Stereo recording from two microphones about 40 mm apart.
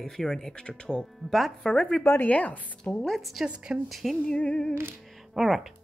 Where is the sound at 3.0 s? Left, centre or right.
Centre.